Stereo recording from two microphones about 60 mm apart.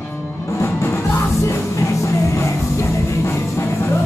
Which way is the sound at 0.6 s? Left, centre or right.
Left.